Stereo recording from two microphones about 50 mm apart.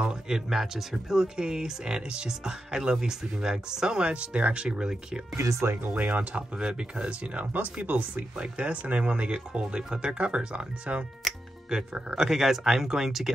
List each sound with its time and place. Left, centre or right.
0.0 s speech: centre
0.5 s speech: centre; by 4.6 s right
4.6 s speech: centre
5.4 s speech: right
5.9 s speech: right
6.6 s speech: centre
11.7 s speech: centre